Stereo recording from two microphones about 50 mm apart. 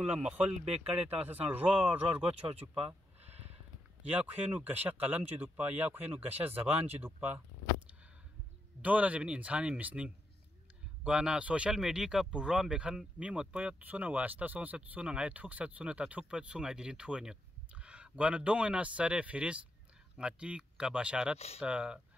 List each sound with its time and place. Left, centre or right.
0.0 s speech: centre
0.4 s speech: right
4.1 s speech: right
8.8 s speech: right
11.1 s speech: right
11.7 s a man's voice: centre